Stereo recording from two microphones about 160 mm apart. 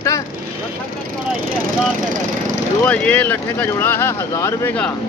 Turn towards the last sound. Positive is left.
turn(degrees=20)  # may be behind; listen again after turning